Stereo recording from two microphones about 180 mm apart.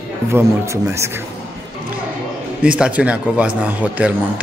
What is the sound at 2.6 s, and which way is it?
A man's voice, 5° right (ahead or behind).